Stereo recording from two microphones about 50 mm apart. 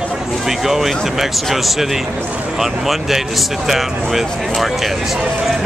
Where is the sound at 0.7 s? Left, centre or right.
Centre.